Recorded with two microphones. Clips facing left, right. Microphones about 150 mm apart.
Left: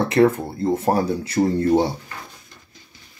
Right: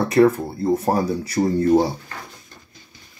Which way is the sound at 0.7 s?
25° left (ahead or behind).